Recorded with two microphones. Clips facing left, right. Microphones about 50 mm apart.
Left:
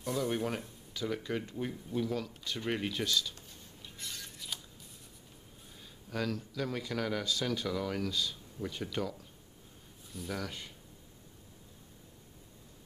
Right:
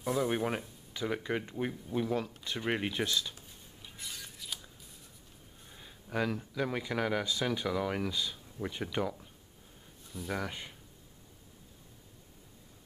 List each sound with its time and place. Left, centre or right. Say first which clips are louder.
0.0 s speech: right 2 dB; centre
4.0 s a sound: even; centre
5.8 s speech: right 3 dB; centre
10.3 s speech: right 3 dB; centre